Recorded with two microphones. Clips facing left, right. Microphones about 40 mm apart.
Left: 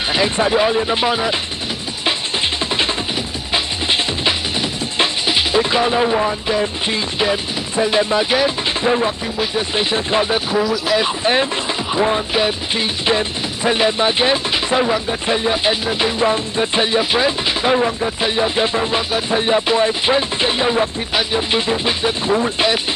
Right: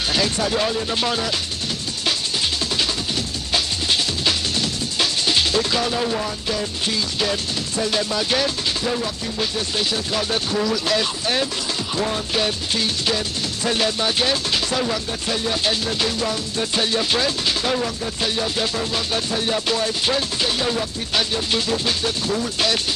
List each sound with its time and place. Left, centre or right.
0.1 s music: left
3.5 s music: left
8.8 s music: left